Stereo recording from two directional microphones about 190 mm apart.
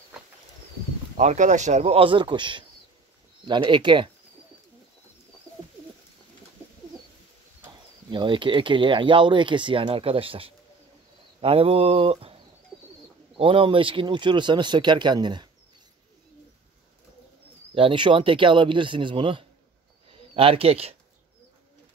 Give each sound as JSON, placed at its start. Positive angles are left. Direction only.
{"t": 1.1, "sound": "speech", "side_deg": -40}
{"t": 7.6, "sound": "speech", "side_deg": -25}
{"t": 12.7, "sound": "bird", "side_deg": -5}
{"t": 13.4, "sound": "speech", "side_deg": -25}
{"t": 17.7, "sound": "speech", "side_deg": -25}